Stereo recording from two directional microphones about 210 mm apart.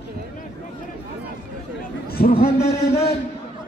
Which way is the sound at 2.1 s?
45° left (ahead or behind).